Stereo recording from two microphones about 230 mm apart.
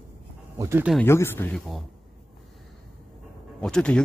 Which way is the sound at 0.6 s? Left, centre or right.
Centre.